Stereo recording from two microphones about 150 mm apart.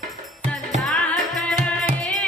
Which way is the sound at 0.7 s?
Centre (ahead or behind).